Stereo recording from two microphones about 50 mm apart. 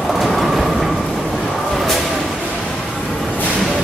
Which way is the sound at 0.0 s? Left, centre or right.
Centre.